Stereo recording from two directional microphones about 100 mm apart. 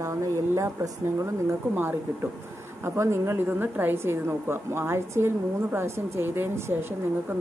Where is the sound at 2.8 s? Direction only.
25° right (ahead or behind).